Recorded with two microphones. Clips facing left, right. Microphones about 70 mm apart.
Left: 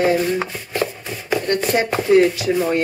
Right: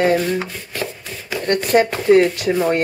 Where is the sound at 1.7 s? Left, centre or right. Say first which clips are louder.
Right 2 dB; right.